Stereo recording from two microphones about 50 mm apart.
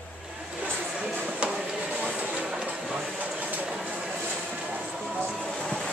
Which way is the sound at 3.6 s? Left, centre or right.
Centre.